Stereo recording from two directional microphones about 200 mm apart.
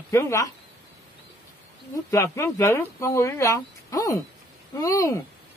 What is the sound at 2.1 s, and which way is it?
Speech, 15° left (ahead or behind).